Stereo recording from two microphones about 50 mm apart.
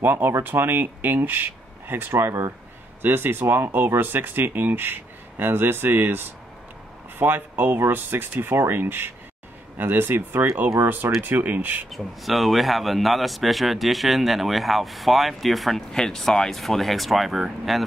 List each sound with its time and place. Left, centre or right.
0.0 s speech: right
11.9 s a man's voice: centre